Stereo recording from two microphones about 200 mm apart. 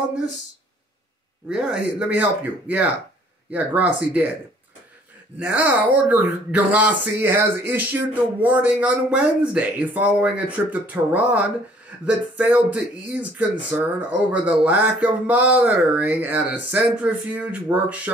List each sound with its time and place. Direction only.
1.5 s speech: 5° right (ahead or behind)
5.4 s speech: 5° right (ahead or behind)